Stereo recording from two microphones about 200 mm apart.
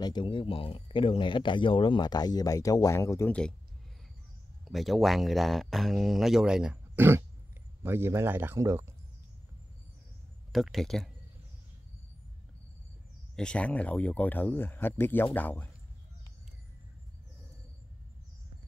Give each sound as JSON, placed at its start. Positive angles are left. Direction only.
{"t": 0.0, "sound": "speech", "side_deg": 25}
{"t": 4.6, "sound": "speech", "side_deg": 0}
{"t": 10.5, "sound": "speech", "side_deg": 0}
{"t": 13.4, "sound": "speech", "side_deg": 5}